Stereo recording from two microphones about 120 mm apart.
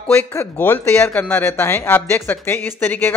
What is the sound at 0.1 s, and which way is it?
Speech, 20° left (ahead or behind).